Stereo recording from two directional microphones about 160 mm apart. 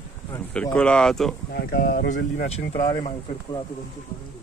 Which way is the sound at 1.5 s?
80° left.